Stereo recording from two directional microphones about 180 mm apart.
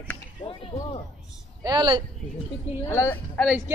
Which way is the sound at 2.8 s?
15° left (ahead or behind).